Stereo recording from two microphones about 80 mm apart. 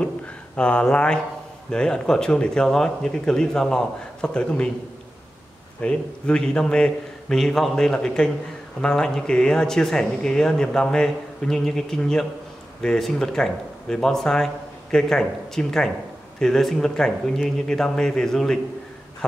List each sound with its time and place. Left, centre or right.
0.6 s speech: centre
5.8 s speech: centre